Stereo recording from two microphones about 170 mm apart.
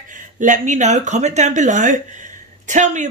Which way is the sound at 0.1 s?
50° right (ahead or behind).